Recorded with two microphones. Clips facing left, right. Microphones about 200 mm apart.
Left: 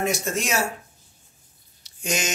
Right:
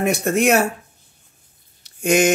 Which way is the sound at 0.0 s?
60° right (ahead or behind).